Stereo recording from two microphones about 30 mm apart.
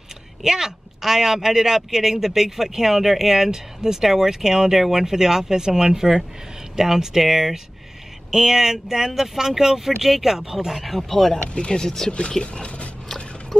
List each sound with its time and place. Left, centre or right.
0.4 s speech: centre
10.7 s speech: centre
11.0 s speech: centre
11.5 s speech: left
12.6 s a sound: left